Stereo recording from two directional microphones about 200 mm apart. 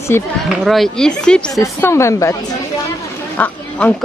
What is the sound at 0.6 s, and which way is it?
A woman's voice, centre (ahead or behind).